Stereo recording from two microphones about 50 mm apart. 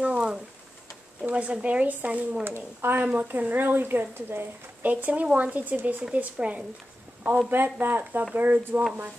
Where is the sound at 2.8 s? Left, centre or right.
Right.